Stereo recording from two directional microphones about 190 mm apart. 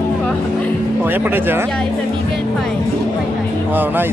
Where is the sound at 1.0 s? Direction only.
10° right (ahead or behind).